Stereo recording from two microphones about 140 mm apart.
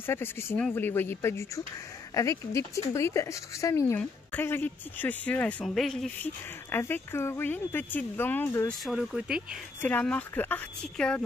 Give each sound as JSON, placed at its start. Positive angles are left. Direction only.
{"t": 0.0, "sound": "a woman's voice", "side_deg": 15}
{"t": 6.7, "sound": "speech", "side_deg": 15}
{"t": 8.6, "sound": "speech", "side_deg": -5}
{"t": 9.8, "sound": "speech", "side_deg": 10}